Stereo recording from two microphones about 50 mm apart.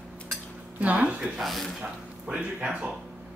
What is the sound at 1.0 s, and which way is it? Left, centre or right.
Speech, centre.